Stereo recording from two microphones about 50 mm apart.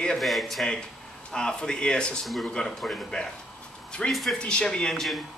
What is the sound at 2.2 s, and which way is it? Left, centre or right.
Speech, centre.